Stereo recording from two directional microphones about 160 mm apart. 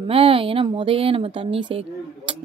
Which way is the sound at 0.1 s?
35° right (ahead or behind).